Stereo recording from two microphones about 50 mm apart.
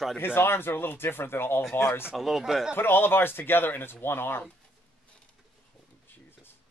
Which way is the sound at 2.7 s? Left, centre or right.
Left.